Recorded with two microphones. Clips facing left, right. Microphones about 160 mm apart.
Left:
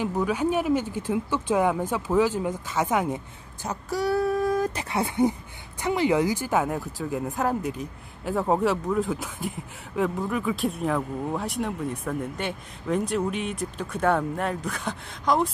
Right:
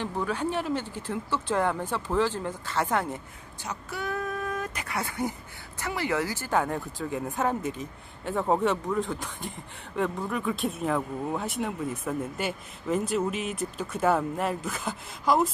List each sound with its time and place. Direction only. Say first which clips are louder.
0.0 s speech: left 5 dB; 10° left (ahead or behind)
3.6 s speech: left 7 dB; 35° left (ahead or behind); by 15.5 s centre (ahead or behind)